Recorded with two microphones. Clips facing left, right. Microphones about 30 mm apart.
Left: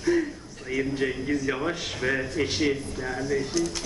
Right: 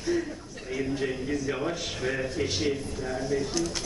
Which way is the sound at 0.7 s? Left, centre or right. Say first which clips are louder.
Left 3 dB; left.